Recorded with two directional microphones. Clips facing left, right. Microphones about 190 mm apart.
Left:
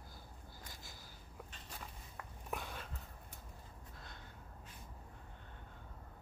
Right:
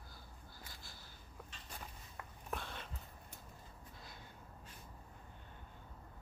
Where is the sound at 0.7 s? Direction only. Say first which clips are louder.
Left 2 dB; 15° left (ahead or behind).